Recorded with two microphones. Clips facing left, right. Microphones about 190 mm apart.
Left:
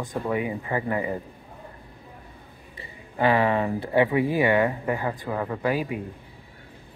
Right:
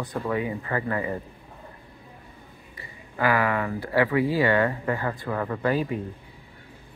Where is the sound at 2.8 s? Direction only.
25° left (ahead or behind).